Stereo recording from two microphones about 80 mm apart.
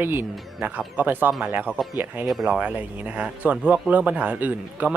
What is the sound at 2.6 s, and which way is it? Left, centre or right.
Speech, centre.